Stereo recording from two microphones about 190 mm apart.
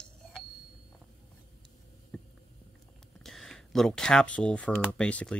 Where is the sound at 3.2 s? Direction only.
Centre (ahead or behind).